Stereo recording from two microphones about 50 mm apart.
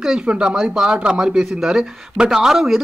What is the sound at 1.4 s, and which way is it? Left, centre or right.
A man's voice, centre.